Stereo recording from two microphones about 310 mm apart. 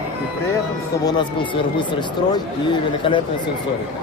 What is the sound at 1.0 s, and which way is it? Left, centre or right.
Speech, centre.